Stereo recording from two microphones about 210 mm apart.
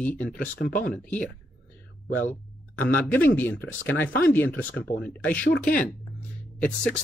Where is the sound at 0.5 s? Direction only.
40° left (ahead or behind).